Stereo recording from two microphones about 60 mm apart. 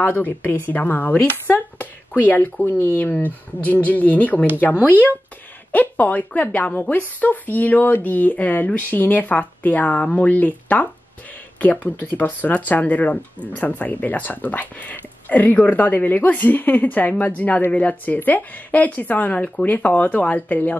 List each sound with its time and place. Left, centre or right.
0.0 s a woman's voice: left
1.5 s a sound: left
2.6 s a woman's voice: left
5.7 s a woman's voice: left